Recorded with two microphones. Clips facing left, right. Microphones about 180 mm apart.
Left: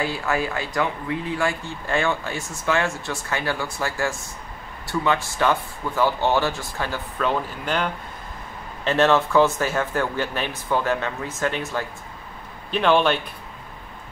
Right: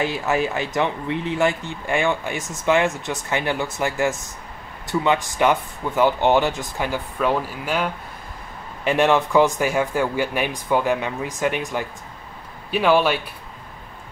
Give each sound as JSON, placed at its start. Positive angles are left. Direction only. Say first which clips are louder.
{"t": 0.0, "sound": "speech", "louder": "right 3 dB", "side_deg": -20}